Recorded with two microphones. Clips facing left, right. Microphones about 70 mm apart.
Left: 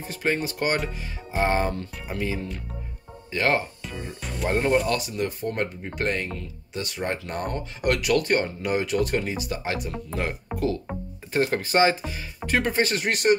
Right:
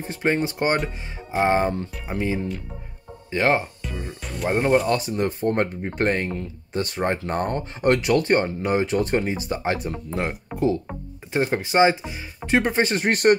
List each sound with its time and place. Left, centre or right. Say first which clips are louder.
0.0 s speech: right 3 dB; right
4.2 s speech: even; centre
4.5 s speech: right 2 dB; centre
4.8 s speech: right 4 dB; right
10.5 s speech: right 4 dB; centre
11.3 s speech: right 2 dB; centre; by 13.4 s right